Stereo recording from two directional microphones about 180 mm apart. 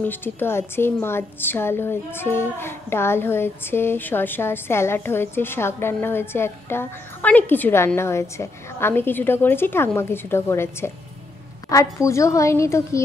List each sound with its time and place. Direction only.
0.0 s a woman's voice: 10° left (ahead or behind)